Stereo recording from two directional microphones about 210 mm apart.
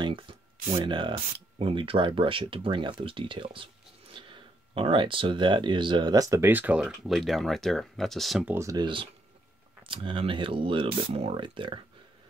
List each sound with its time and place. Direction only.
0.0 s speech: 25° right (ahead or behind); by 8.5 s centre (ahead or behind)
8.5 s speech: 15° right (ahead or behind)